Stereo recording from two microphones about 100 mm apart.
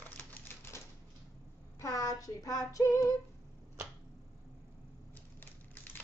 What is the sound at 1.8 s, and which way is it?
Female singing, 35° left (ahead or behind).